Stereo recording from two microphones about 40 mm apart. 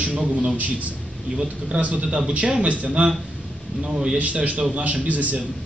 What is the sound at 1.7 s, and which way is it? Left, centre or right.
A man's voice, right.